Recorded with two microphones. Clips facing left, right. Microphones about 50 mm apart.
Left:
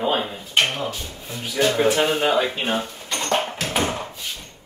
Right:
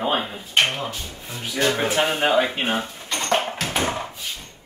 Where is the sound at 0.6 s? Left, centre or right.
Right.